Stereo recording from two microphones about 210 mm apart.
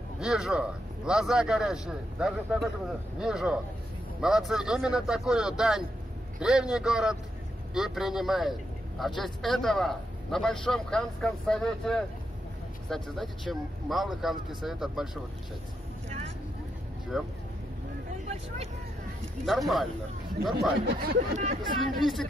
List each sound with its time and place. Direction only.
0.2 s a man's voice: 5° right (ahead or behind)
17.1 s a man's voice: centre (ahead or behind)
19.4 s a man's voice: centre (ahead or behind)
21.0 s speech: 40° right (ahead or behind)